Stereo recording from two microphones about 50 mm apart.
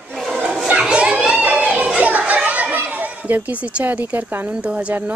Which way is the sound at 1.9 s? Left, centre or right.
Right.